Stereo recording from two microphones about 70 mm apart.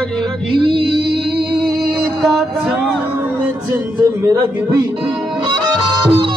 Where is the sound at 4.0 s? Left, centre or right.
Right.